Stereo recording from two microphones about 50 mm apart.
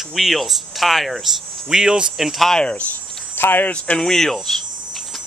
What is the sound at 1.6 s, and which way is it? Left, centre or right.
Speech, centre.